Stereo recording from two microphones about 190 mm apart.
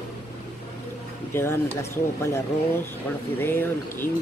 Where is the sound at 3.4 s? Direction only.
10° left (ahead or behind).